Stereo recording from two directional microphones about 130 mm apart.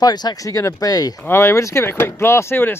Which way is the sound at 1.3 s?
20° left (ahead or behind).